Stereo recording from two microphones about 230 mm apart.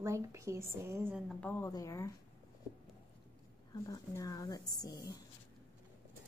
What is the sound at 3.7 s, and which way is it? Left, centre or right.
A woman's voice, centre.